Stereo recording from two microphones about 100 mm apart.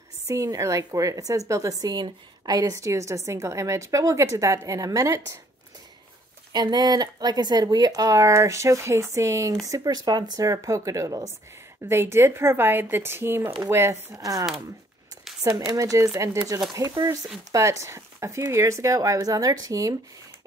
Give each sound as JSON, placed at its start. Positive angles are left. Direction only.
{"t": 0.3, "sound": "speech", "side_deg": -30}
{"t": 6.5, "sound": "speech", "side_deg": -45}
{"t": 9.7, "sound": "a woman's voice", "side_deg": -40}
{"t": 15.7, "sound": "speech", "side_deg": -35}